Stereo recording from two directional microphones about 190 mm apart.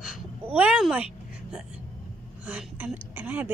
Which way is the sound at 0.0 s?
5° right (ahead or behind).